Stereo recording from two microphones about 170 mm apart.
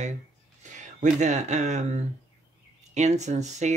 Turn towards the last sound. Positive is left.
turn(degrees=-45)  # may be behind; listen again after turning